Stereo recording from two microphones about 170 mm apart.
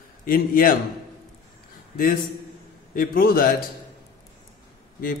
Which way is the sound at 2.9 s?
60° left (ahead or behind).